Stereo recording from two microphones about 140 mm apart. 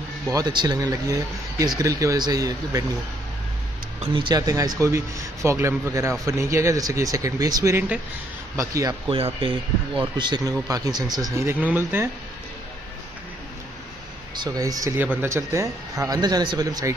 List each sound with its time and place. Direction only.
0.3 s speech: 30° right (ahead or behind)
4.1 s speech: 35° right (ahead or behind)
9.1 s speech: 40° right (ahead or behind)
11.3 s speech: 15° right (ahead or behind)
14.3 s speech: 30° right (ahead or behind)
15.0 s speech: 15° right (ahead or behind)